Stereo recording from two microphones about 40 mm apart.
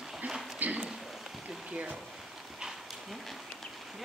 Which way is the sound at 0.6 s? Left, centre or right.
Right.